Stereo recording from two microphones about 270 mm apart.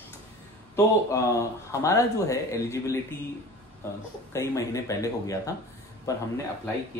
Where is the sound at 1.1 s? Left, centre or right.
Centre.